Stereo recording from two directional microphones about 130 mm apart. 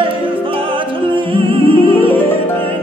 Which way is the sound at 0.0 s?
40° right (ahead or behind).